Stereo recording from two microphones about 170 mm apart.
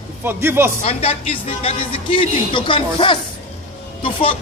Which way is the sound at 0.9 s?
35° left (ahead or behind).